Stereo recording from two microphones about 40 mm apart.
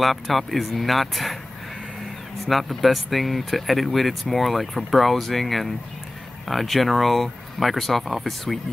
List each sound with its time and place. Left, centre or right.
0.0 s speech: centre
2.4 s speech: centre